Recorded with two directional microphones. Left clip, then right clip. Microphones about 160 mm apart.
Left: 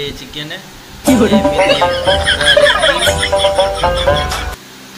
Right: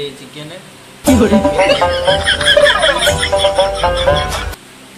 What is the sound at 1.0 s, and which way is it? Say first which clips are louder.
Speech: even; centre (ahead or behind).